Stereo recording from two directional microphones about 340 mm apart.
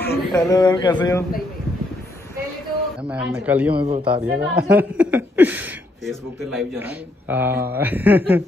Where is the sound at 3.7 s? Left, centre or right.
Centre.